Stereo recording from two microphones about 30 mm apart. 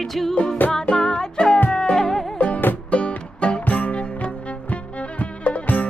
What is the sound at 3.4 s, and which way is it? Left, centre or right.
Music, left.